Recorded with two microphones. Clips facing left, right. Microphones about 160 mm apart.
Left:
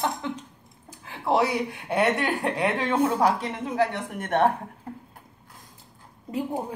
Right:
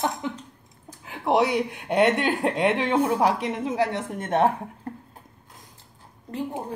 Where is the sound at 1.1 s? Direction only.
20° right (ahead or behind).